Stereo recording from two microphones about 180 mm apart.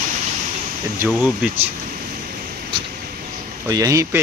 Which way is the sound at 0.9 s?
10° right (ahead or behind).